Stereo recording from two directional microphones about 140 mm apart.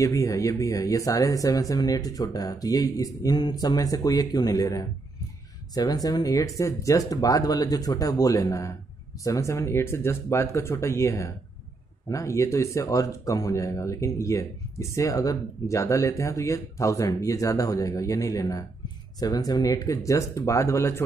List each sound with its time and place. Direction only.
0.0 s speech: 20° left (ahead or behind)
6.0 s speech: 25° left (ahead or behind)